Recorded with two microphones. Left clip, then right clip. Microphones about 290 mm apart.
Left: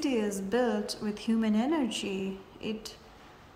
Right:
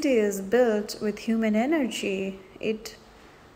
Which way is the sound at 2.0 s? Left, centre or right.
Left.